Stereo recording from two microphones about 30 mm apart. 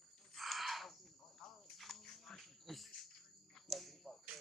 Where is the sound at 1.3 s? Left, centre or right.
Left.